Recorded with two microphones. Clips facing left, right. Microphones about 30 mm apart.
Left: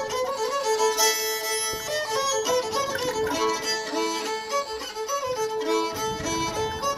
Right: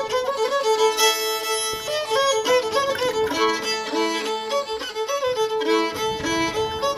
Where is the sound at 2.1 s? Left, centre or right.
Right.